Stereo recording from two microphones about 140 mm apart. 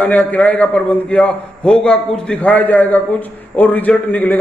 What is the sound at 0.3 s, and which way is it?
A man's voice, 10° left (ahead or behind).